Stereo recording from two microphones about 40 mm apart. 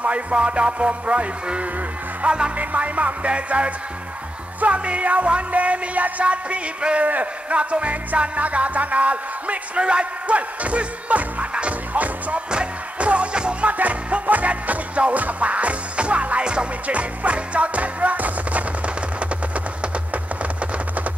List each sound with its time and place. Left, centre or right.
0.0 s music: right
2.5 s music: right
12.4 s music: right
13.7 s music: right
19.1 s a sound: right